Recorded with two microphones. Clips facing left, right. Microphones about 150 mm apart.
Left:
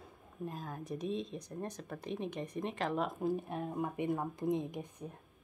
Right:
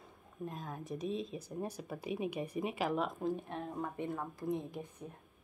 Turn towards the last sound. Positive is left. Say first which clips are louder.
# left 3 dB
turn(degrees=20)  # may be behind; listen again after turning